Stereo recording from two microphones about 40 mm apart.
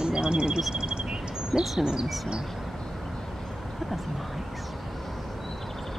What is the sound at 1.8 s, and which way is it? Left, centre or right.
Speech, centre.